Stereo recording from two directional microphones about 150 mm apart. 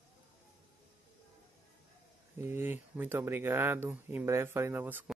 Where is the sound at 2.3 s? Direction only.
15° right (ahead or behind).